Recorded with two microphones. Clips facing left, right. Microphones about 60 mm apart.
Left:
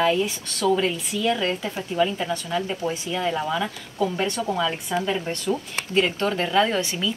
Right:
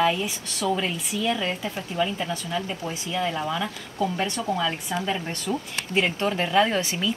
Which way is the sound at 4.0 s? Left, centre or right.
Centre.